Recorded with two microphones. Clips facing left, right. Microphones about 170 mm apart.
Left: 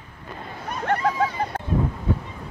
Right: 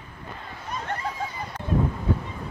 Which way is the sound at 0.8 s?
70° left (ahead or behind).